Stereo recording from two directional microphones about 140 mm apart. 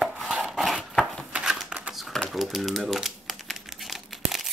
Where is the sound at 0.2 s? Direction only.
Centre (ahead or behind).